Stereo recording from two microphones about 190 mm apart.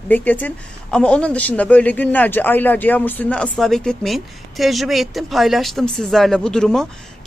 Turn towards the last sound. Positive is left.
turn(degrees=5)  # may be behind; listen again after turning